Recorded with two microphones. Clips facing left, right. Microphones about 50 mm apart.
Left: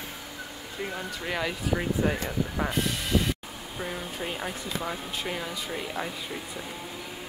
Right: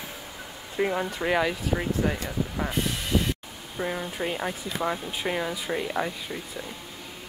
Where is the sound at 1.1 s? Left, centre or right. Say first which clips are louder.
Right 6 dB; right.